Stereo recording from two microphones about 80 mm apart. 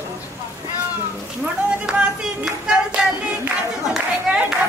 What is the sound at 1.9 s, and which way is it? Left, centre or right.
Music, centre.